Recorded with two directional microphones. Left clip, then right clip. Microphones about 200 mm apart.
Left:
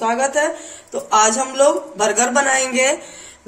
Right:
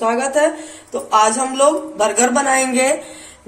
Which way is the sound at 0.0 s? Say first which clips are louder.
Right 2 dB; 50° left (ahead or behind).